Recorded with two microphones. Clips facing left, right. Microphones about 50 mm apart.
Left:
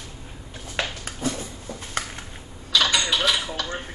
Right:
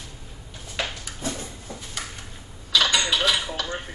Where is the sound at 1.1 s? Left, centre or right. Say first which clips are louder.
Left 5 dB; left.